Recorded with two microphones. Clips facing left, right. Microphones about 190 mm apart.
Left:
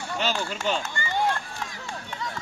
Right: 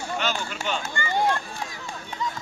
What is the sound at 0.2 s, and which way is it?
Speech, 30° left (ahead or behind).